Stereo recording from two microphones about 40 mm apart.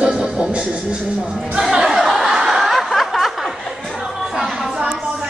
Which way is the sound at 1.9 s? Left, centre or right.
Centre.